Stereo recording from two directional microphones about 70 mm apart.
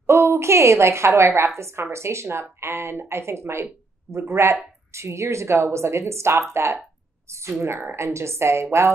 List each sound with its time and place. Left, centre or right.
0.0 s a woman's voice: right